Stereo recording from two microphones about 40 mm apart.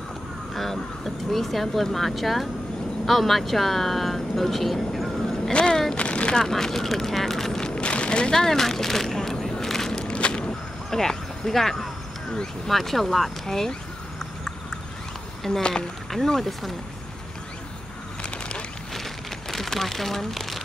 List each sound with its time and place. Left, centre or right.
0.6 s speech: centre
5.5 s speech: left
5.9 s a sound: left
6.3 s speech: centre
8.4 s a sound: centre
10.0 s walk: left
10.9 s a sound: centre
12.6 s speech: centre
13.5 s speech: centre
15.5 s speech: centre
19.5 s speech: centre